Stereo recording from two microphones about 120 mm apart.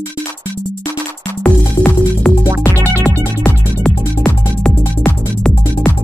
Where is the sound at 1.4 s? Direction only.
10° left (ahead or behind).